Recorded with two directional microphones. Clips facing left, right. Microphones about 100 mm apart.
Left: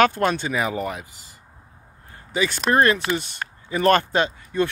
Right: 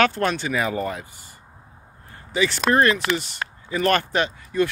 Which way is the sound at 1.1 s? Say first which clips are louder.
Right 2 dB; 90° left.